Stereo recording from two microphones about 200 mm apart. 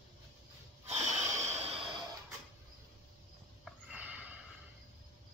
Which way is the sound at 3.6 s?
5° right (ahead or behind).